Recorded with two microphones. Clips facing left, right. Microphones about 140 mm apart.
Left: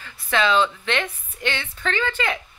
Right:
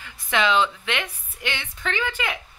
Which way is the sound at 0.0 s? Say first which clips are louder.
Left 1 dB; 15° right (ahead or behind).